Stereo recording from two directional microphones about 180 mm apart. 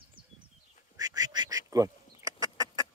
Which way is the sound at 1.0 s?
20° right (ahead or behind).